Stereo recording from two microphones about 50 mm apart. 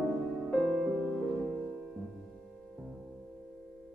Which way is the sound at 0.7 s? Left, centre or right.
Centre.